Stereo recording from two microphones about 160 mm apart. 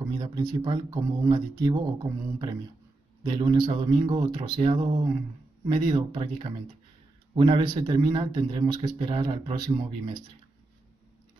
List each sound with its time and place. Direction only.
0.1 s speech: 25° right (ahead or behind)